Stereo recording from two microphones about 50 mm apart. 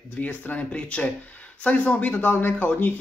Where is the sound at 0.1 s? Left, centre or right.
Left.